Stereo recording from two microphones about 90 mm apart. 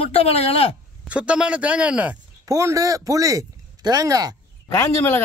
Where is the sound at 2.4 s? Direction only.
40° right (ahead or behind).